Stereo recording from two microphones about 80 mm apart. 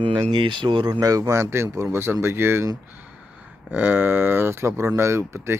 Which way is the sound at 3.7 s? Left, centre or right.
Right.